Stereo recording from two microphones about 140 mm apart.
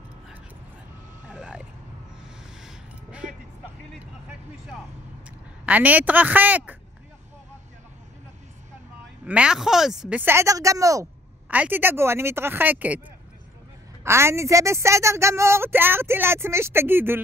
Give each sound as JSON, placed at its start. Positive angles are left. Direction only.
{"t": 1.2, "sound": "vehicle", "side_deg": -5}
{"t": 2.6, "sound": "music", "side_deg": -5}
{"t": 5.7, "sound": "speech", "side_deg": -10}
{"t": 9.2, "sound": "speech", "side_deg": -10}
{"t": 11.5, "sound": "speech", "side_deg": -10}
{"t": 14.0, "sound": "speech", "side_deg": -20}